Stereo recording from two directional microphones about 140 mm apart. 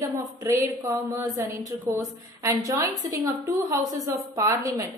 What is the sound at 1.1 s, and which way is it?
A woman's voice, 25° right (ahead or behind).